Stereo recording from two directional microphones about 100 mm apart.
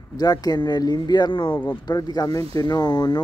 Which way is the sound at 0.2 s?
40° left (ahead or behind).